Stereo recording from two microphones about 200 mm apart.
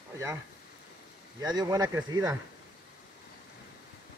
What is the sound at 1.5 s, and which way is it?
Speech, 15° right (ahead or behind).